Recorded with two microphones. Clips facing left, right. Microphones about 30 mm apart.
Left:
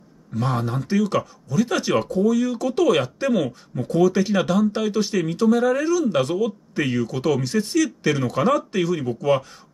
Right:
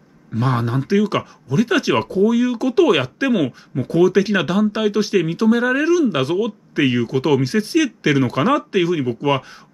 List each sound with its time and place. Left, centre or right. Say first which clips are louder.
0.3 s speech: right 4 dB; right